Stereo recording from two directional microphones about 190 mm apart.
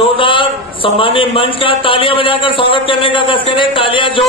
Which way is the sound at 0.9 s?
25° left (ahead or behind).